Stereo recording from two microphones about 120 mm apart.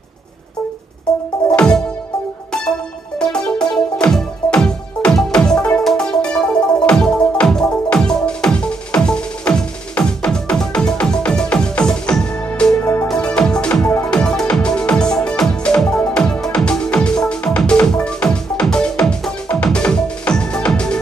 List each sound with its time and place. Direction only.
1.5 s music: 10° left (ahead or behind)
3.2 s music: 5° left (ahead or behind)
12.7 s music: 20° left (ahead or behind)
13.1 s music: 5° left (ahead or behind)